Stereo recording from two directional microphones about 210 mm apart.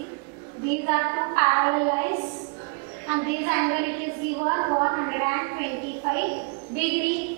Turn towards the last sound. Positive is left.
turn(degrees=-15)  # may be behind; listen again after turning